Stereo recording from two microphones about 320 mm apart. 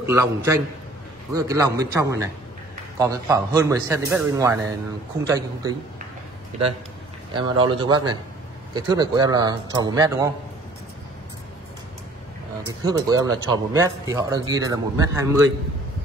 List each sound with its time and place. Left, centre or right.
0.0 s a man's voice: centre
6.5 s a man's voice: right
12.8 s a man's voice: centre